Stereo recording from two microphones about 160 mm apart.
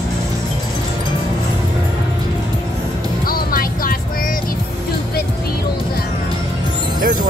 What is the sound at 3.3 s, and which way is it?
Music, 65° left (ahead or behind).